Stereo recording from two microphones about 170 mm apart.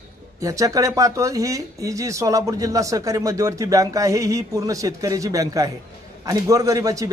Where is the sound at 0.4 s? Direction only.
20° right (ahead or behind).